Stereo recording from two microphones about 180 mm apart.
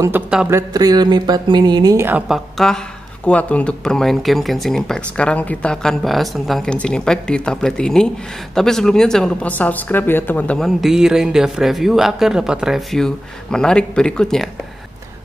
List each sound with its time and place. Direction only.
0.5 s speech: 20° right (ahead or behind); by 14.5 s 5° left (ahead or behind)